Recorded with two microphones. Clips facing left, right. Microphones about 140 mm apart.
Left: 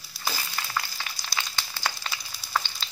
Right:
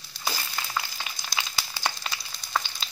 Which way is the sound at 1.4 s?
15° right (ahead or behind).